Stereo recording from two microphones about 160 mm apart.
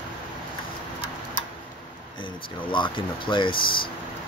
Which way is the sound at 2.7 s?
30° left (ahead or behind).